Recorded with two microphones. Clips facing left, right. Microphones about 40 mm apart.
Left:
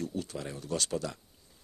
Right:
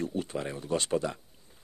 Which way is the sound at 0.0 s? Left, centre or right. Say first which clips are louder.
Right 4 dB; right.